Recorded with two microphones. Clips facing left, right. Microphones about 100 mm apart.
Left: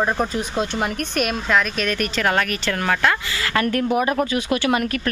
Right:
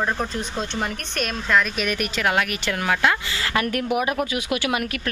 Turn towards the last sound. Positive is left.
turn(degrees=-5)  # may be behind; listen again after turning